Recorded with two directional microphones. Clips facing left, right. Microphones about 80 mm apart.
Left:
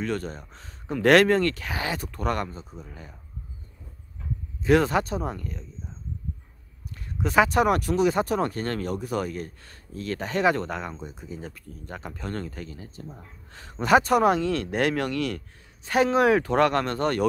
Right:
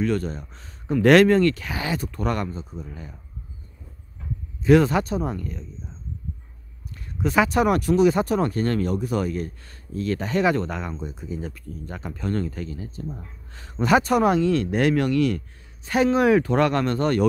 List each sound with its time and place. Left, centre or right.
0.0 s speech: left
0.9 s speech: left
4.6 s speech: left
7.3 s speech: left
10.6 s speech: left
13.8 s speech: left